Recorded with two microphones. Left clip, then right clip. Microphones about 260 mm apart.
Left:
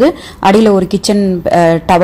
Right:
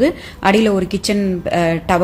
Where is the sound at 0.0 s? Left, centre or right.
Centre.